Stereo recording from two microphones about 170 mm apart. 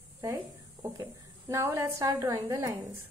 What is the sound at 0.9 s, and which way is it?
A woman's voice, 20° right (ahead or behind).